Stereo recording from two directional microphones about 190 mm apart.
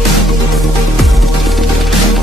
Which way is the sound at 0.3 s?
Centre (ahead or behind).